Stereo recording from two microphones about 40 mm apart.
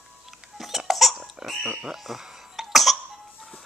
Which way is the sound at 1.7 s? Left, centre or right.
Centre.